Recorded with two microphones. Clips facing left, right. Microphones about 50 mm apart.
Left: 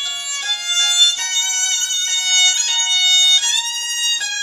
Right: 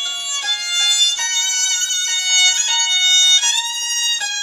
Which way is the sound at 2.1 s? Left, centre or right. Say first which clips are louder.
Even; right.